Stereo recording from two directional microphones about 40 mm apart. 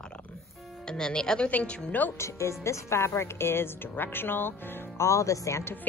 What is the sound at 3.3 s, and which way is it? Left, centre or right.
Speech, left.